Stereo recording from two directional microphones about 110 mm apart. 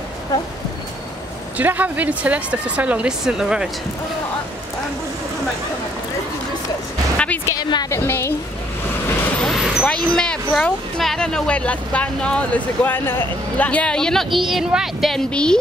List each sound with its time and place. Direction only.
1.6 s speech: 15° right (ahead or behind)
7.4 s a woman's voice: 30° left (ahead or behind)
9.4 s vehicle: centre (ahead or behind)
9.8 s speech: 5° left (ahead or behind)